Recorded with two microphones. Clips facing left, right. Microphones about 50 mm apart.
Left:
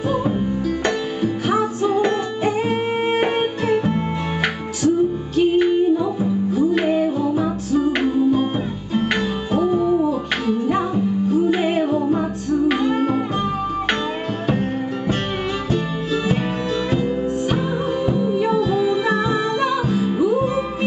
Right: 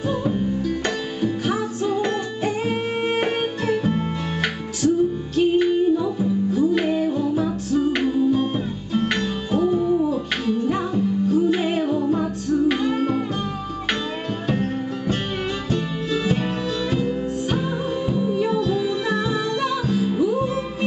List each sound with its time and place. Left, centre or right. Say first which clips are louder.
0.1 s music: left 1 dB; centre
14.5 s music: left 2 dB; centre